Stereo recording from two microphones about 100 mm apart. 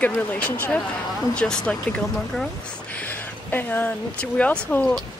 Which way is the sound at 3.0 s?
20° left (ahead or behind).